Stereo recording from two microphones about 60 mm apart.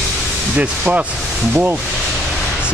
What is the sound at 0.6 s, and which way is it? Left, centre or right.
Speech, right.